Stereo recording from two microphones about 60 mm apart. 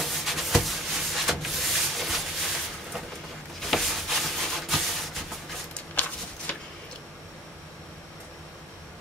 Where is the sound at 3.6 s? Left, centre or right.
Centre.